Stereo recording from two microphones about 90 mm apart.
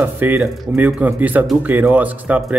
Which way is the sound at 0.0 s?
20° right (ahead or behind).